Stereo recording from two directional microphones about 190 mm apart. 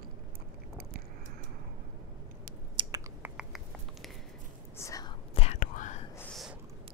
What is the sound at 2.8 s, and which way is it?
Chewing, 25° right (ahead or behind).